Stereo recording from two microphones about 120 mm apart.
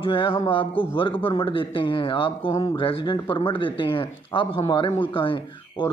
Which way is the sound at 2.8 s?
45° left (ahead or behind).